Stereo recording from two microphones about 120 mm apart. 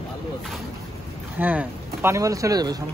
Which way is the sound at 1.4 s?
15° right (ahead or behind).